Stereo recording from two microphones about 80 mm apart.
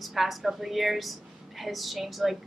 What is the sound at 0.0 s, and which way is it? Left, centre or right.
A woman's voice, centre.